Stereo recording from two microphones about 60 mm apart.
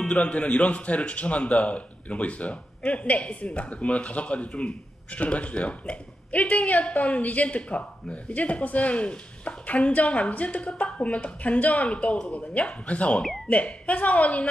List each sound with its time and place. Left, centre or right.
0.1 s a man's voice: left